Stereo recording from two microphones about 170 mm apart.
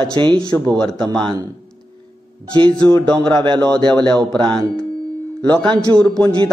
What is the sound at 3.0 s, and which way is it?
A man's voice, 5° left (ahead or behind).